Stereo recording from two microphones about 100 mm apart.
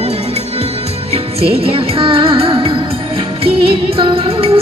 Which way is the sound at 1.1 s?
80° right.